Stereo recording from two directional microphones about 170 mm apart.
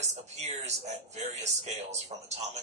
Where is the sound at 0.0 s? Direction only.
40° right (ahead or behind).